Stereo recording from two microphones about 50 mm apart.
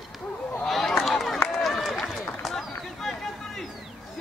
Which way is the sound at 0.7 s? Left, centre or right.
Centre.